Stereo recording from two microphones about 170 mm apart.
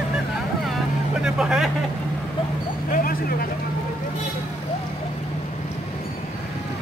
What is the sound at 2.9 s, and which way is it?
Vehicle, 60° left (ahead or behind).